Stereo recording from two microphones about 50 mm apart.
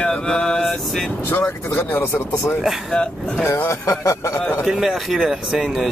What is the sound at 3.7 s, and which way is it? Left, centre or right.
Speech, left.